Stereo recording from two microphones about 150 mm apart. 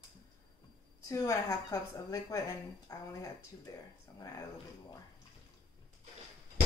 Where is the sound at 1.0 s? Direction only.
25° left (ahead or behind).